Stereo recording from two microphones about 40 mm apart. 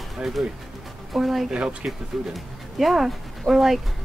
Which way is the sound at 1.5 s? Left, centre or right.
Right.